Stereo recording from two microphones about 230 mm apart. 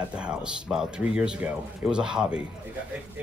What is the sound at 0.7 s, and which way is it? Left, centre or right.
Speech, centre.